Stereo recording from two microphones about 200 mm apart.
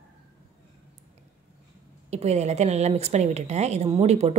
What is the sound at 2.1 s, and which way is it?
Speech, 35° right (ahead or behind).